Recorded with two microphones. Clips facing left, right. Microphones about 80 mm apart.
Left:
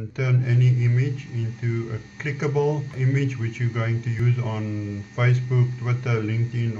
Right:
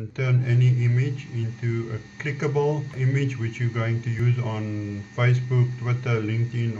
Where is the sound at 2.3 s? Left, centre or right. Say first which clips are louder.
Left 1 dB; centre.